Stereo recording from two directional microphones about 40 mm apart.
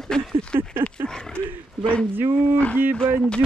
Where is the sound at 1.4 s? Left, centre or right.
Right.